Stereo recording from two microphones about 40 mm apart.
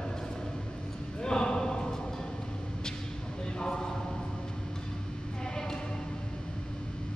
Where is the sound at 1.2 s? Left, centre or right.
Centre.